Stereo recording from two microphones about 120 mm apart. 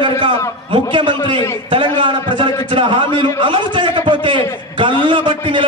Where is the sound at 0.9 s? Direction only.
45° right (ahead or behind).